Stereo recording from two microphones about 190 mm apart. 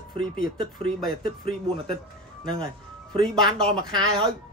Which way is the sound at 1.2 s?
50° left (ahead or behind).